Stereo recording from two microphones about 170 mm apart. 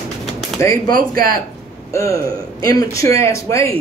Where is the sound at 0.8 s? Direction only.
55° right (ahead or behind).